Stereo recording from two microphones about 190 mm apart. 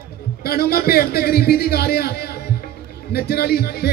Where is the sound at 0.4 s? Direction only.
55° left (ahead or behind).